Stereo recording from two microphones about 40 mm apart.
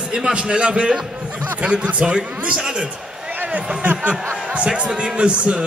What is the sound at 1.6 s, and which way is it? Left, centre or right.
Speech, right.